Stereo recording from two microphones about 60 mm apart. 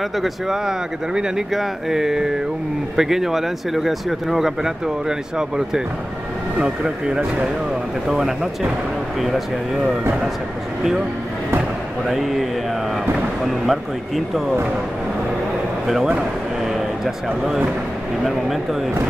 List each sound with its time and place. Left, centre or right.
0.2 s speech: centre
6.6 s speech: centre
10.8 s speech: centre
12.1 s speech: centre
13.5 s speech: centre
18.2 s speech: centre